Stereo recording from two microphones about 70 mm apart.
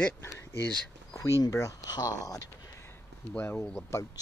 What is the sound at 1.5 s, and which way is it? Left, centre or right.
Speech, left.